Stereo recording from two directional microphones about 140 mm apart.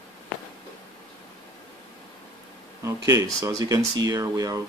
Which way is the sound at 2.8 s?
25° right (ahead or behind).